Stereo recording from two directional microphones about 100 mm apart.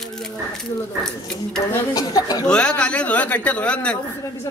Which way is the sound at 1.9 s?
40° left (ahead or behind).